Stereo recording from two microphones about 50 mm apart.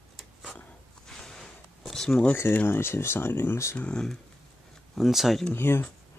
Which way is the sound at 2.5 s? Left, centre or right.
Left.